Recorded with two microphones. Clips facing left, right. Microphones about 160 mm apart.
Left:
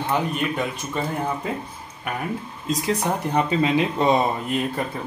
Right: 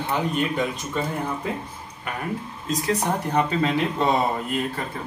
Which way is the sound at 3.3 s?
15° left (ahead or behind).